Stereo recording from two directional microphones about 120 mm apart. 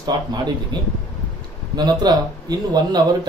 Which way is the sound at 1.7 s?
35° right (ahead or behind).